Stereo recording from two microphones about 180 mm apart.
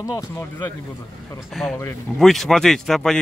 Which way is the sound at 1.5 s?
Centre (ahead or behind).